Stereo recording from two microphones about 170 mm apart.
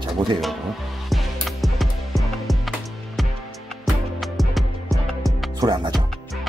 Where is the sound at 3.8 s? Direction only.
Centre (ahead or behind).